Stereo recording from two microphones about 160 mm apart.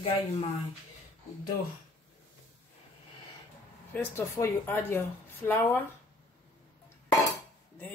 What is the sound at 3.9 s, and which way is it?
Speech, 15° left (ahead or behind).